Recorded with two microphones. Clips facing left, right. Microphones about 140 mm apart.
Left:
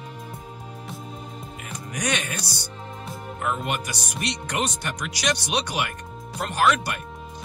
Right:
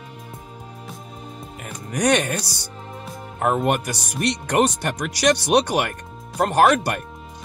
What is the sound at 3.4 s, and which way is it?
Speech, 50° right (ahead or behind).